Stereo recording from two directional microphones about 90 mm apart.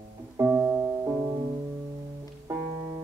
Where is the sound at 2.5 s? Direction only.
30° right (ahead or behind).